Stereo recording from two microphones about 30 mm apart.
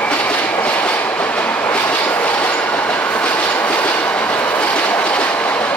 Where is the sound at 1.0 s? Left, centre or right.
Left.